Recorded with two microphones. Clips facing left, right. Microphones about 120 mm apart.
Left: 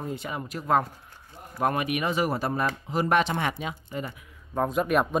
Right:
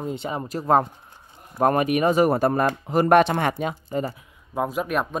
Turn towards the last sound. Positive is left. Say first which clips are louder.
# left 1 dB
turn(degrees=0)  # may be behind; listen again after turning